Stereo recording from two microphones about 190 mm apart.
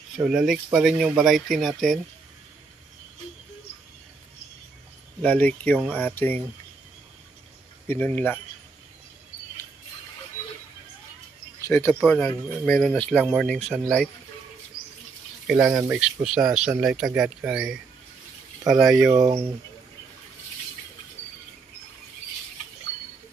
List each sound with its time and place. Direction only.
0.2 s speech: 5° right (ahead or behind)
5.2 s speech: 5° left (ahead or behind)
7.8 s speech: 10° left (ahead or behind)
11.6 s speech: 10° left (ahead or behind)
15.4 s speech: 10° right (ahead or behind)
18.6 s speech: 20° right (ahead or behind)
18.9 s speech: centre (ahead or behind)